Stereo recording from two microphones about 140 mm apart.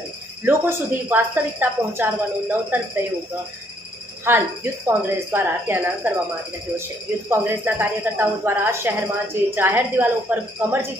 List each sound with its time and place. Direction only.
0.5 s speech: 15° right (ahead or behind)
4.3 s speech: 15° right (ahead or behind)
7.2 s speech: 15° right (ahead or behind)